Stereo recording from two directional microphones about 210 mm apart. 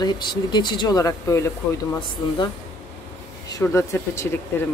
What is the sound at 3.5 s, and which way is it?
Speech, 15° left (ahead or behind).